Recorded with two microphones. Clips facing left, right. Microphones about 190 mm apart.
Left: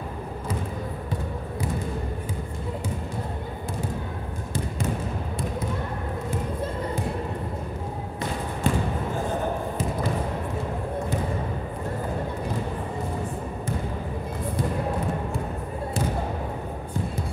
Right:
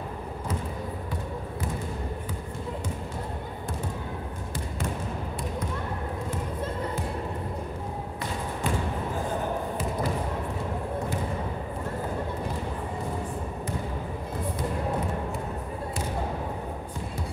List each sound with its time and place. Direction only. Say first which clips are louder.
8.6 s basketball bounce: left 5 dB; 25° left (ahead or behind)